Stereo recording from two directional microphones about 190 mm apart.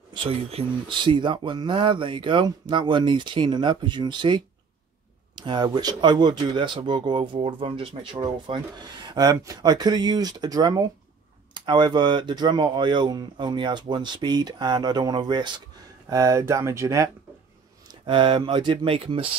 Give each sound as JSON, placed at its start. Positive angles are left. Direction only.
{"t": 0.1, "sound": "speech", "side_deg": -30}